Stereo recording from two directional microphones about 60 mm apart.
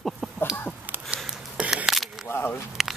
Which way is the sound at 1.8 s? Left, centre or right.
Centre.